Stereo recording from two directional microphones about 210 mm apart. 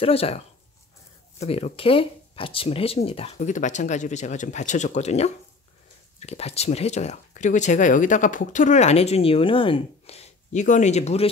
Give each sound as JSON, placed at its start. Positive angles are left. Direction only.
{"t": 0.0, "sound": "speech", "side_deg": 30}
{"t": 1.4, "sound": "speech", "side_deg": 30}